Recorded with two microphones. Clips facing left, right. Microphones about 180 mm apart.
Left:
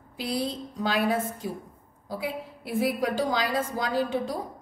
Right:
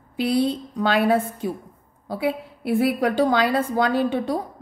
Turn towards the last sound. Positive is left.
turn(degrees=-65)  # may be behind; listen again after turning